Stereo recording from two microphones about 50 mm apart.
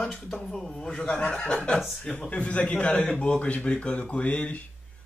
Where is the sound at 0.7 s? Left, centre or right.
Centre.